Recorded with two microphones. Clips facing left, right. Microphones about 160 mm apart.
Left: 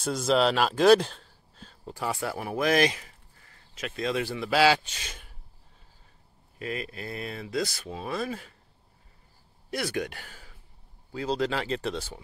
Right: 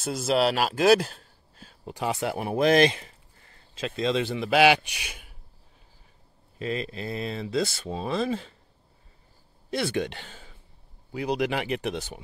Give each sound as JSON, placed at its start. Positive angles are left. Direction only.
{"t": 0.0, "sound": "speech", "side_deg": -5}
{"t": 2.0, "sound": "speech", "side_deg": -20}
{"t": 6.6, "sound": "speech", "side_deg": -25}
{"t": 9.7, "sound": "speech", "side_deg": -25}